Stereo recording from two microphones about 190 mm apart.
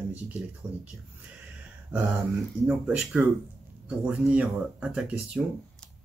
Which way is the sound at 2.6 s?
5° right (ahead or behind).